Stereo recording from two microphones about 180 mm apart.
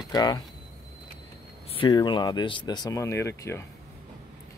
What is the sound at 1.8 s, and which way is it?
Speech, 25° left (ahead or behind).